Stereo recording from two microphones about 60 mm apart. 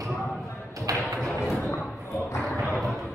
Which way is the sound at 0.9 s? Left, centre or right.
Right.